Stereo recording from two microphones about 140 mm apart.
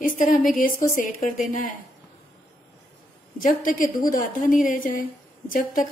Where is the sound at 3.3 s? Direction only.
75° left (ahead or behind).